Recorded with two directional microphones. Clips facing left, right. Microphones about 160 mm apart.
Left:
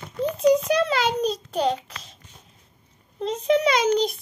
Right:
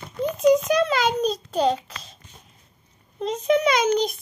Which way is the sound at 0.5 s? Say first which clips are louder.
Right 1 dB; 25° left (ahead or behind).